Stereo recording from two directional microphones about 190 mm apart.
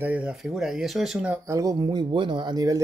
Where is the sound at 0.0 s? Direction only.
5° right (ahead or behind).